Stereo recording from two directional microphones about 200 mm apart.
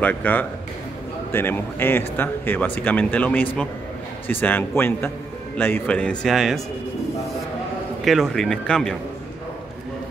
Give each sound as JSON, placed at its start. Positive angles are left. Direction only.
{"t": 0.0, "sound": "speech", "side_deg": 10}
{"t": 8.0, "sound": "speech", "side_deg": 0}